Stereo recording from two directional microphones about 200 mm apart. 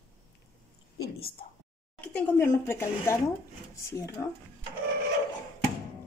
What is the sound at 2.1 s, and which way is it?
A woman's voice, 10° left (ahead or behind).